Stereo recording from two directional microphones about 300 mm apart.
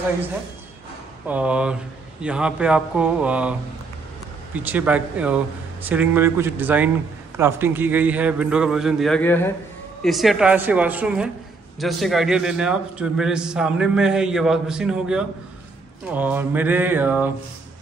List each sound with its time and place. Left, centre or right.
1.2 s a man's voice: centre
4.6 s a man's voice: centre